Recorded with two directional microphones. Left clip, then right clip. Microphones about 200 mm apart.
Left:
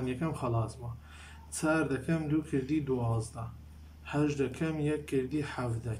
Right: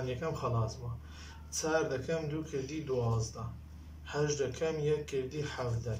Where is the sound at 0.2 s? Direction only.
45° left (ahead or behind).